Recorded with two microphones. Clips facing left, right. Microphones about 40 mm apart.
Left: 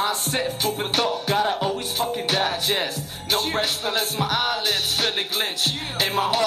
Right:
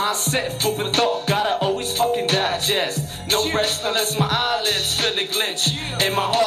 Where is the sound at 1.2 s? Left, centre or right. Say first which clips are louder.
Right 2 dB; right.